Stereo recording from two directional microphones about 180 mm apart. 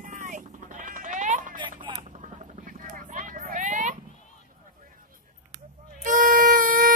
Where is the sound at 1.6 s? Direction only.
25° right (ahead or behind).